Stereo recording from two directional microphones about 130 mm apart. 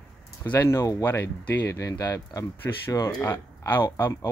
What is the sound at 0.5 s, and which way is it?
Speech, 20° left (ahead or behind).